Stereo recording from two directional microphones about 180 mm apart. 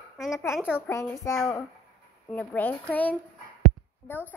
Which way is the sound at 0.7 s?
15° left (ahead or behind).